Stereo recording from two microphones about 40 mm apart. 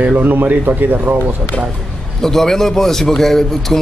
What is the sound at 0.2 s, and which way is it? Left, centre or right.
Speech, right.